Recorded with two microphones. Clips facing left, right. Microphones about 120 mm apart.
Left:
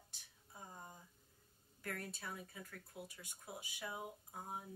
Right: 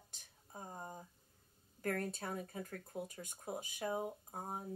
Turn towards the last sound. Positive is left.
turn(degrees=-40)  # may be behind; listen again after turning